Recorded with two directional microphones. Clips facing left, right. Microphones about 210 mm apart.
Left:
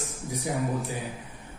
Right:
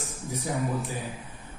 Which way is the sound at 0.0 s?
15° left (ahead or behind).